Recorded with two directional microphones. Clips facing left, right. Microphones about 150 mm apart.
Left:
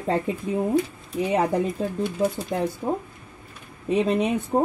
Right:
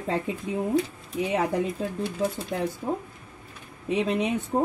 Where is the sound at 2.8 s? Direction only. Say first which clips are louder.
Left 3 dB; 20° left (ahead or behind).